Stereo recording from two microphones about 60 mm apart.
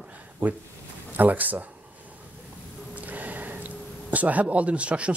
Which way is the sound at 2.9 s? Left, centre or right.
Right.